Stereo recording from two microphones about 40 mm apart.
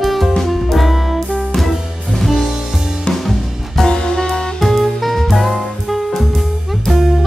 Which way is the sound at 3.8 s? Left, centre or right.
Centre.